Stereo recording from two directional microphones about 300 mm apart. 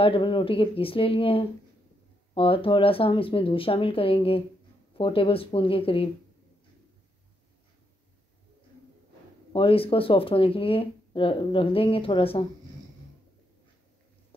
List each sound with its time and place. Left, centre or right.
0.0 s speech: centre
9.5 s speech: centre